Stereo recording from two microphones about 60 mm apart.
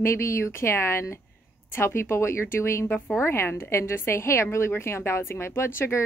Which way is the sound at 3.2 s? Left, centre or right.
Left.